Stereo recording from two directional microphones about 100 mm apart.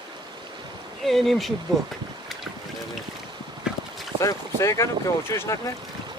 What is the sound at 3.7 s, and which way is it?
Boat, 10° right (ahead or behind).